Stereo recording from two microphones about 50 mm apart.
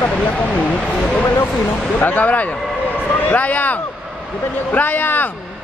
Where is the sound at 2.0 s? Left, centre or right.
Left.